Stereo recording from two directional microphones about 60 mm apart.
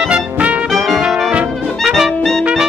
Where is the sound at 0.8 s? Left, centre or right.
Centre.